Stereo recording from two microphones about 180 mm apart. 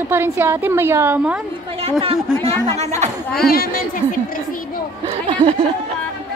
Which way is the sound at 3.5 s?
55° left (ahead or behind).